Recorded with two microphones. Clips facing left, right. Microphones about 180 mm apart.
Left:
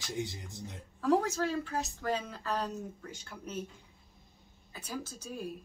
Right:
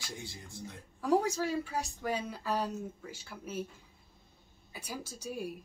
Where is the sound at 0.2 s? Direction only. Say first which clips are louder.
Left 6 dB; 20° left (ahead or behind).